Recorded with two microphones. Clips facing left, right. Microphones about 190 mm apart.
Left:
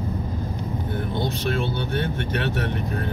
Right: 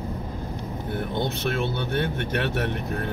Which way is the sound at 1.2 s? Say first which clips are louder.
Left 2 dB; 55° right (ahead or behind).